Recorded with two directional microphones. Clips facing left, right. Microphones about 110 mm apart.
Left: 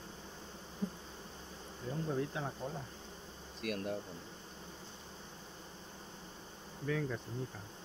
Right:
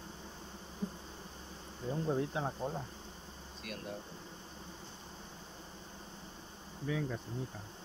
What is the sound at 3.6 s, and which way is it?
Speech, 70° left (ahead or behind).